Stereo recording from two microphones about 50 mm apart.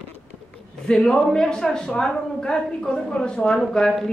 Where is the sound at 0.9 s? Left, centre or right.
Centre.